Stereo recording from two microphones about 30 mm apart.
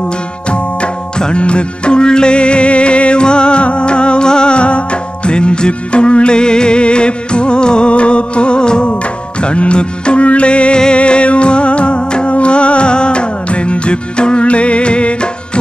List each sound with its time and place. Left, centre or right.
1.1 s music: left